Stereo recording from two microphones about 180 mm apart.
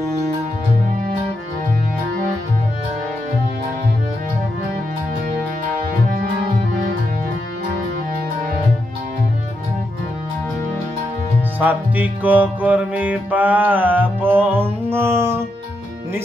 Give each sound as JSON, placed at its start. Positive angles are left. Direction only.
{"t": 11.6, "sound": "music", "side_deg": -10}